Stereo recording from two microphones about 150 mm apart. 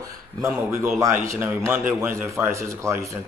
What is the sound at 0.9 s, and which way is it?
A man's voice, 20° right (ahead or behind).